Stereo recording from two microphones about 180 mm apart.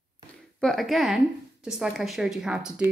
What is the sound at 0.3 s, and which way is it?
A woman's voice, 5° left (ahead or behind).